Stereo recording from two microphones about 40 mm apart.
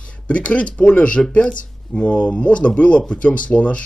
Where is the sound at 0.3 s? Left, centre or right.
Left.